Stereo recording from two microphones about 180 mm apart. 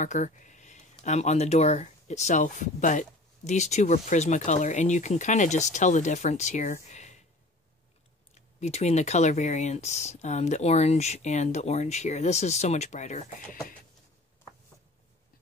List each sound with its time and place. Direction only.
0.0 s speech: 40° left (ahead or behind)
8.4 s speech: 40° left (ahead or behind)